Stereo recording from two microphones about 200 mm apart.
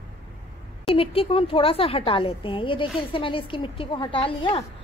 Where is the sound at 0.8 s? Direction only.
25° left (ahead or behind).